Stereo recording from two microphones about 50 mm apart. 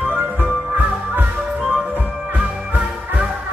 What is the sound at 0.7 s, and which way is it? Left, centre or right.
Music, right.